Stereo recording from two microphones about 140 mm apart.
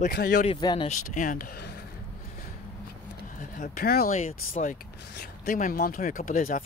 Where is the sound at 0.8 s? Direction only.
65° left (ahead or behind).